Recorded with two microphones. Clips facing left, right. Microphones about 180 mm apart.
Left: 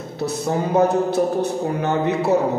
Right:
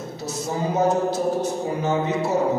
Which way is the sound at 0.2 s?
60° left (ahead or behind).